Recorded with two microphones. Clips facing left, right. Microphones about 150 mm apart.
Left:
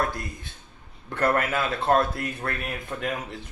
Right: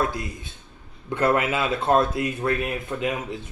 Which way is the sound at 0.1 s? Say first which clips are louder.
Right 3 dB; 15° right (ahead or behind).